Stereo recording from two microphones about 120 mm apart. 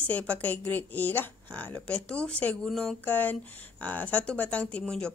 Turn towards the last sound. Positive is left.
turn(degrees=5)  # may be behind; listen again after turning